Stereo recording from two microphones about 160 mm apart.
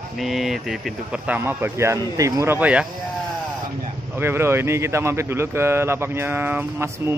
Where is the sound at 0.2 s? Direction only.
Centre (ahead or behind).